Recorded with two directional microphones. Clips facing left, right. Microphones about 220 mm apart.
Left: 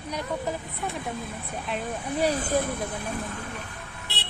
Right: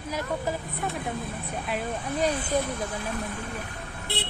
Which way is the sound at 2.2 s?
45° left (ahead or behind).